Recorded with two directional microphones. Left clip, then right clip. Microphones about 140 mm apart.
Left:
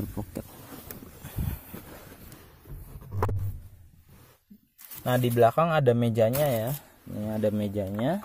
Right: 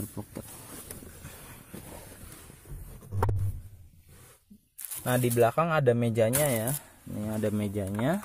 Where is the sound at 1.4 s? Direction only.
40° left (ahead or behind).